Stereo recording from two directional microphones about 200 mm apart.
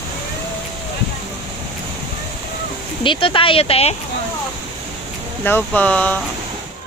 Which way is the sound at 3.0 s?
25° left (ahead or behind).